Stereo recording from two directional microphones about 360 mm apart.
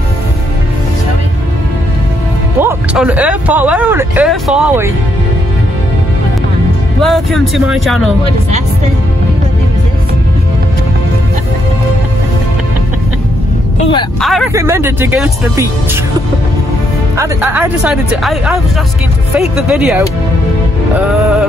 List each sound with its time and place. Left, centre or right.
2.6 s speech: centre
7.0 s speech: centre
14.2 s speech: centre
17.2 s speech: centre